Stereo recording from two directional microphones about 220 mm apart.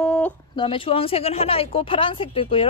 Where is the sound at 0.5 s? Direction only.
25° left (ahead or behind).